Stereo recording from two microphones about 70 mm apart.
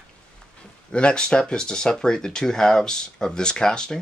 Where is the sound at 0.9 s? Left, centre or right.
Centre.